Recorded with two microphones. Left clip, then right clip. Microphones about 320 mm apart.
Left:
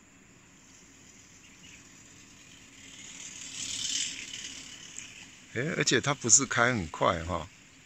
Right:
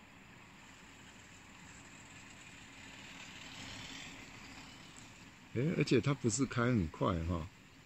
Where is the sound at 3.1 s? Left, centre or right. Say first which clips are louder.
Left 10 dB; right.